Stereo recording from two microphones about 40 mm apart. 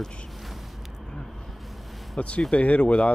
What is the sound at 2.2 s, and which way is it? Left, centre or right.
Speech, left.